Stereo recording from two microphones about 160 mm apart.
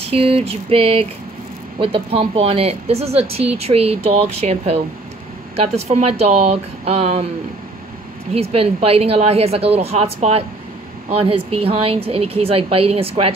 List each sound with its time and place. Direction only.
0.0 s speech: 35° right (ahead or behind)
5.9 s speech: 40° right (ahead or behind)
8.3 s speech: 40° right (ahead or behind)